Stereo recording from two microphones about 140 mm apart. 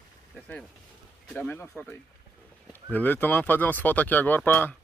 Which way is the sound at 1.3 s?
10° left (ahead or behind).